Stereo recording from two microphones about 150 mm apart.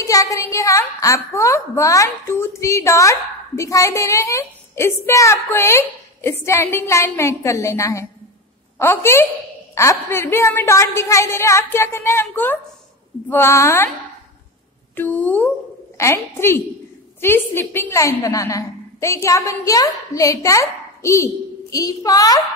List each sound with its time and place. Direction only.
0.0 s a woman's voice: 20° left (ahead or behind)
15.0 s a woman's voice: 10° left (ahead or behind)